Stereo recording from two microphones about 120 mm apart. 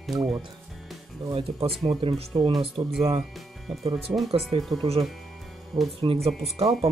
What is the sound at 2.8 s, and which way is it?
Speech, 60° right (ahead or behind).